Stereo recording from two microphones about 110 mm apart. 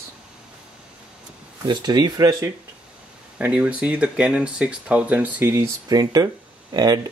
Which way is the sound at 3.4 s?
10° right (ahead or behind).